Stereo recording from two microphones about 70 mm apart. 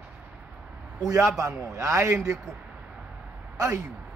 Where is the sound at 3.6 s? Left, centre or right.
Right.